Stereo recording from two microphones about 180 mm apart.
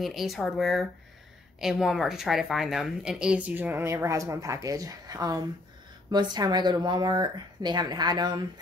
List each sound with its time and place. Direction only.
0.0 s a woman's voice: centre (ahead or behind); by 8.5 s 25° right (ahead or behind)